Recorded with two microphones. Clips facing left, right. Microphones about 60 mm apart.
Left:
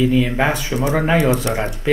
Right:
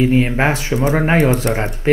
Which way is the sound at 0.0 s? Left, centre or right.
Right.